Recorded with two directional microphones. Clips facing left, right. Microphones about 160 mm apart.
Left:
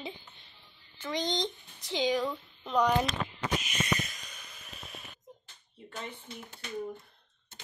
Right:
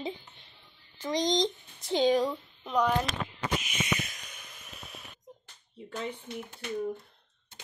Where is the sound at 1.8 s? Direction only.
50° right (ahead or behind).